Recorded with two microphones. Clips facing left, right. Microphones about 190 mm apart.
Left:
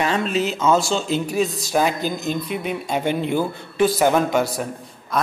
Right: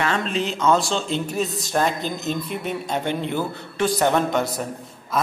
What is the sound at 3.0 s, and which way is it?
Speech, 15° left (ahead or behind).